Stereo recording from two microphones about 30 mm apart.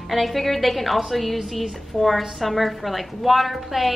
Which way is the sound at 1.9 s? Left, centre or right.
Centre.